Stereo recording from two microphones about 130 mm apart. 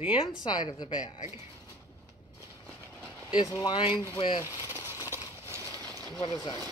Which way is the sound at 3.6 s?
35° left (ahead or behind).